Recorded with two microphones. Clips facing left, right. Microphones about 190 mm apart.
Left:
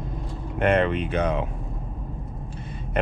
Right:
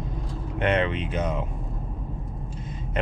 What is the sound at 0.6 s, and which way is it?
Speech, 50° left (ahead or behind).